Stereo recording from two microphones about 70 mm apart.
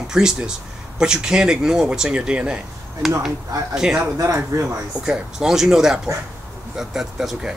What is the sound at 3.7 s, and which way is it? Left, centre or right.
Speech, centre.